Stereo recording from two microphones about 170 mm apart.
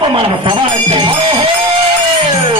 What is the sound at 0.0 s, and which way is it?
Music, 30° right (ahead or behind).